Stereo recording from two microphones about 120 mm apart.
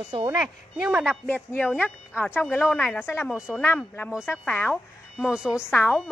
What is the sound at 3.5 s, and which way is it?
A woman's voice, 15° left (ahead or behind).